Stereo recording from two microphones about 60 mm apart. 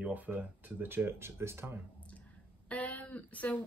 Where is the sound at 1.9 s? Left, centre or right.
Left.